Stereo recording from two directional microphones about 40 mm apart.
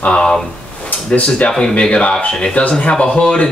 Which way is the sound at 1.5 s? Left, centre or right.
Centre.